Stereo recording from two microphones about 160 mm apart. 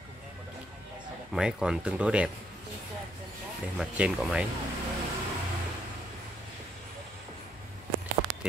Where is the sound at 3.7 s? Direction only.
5° right (ahead or behind).